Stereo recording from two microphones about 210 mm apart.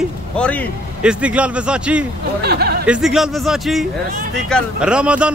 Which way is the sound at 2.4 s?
50° right (ahead or behind).